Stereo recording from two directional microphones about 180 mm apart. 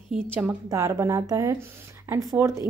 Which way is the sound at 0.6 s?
20° right (ahead or behind).